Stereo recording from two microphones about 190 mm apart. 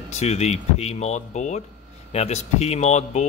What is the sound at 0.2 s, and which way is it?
Speech, 35° left (ahead or behind).